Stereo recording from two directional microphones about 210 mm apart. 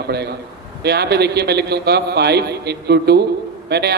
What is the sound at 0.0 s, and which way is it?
A man's voice, 50° right (ahead or behind).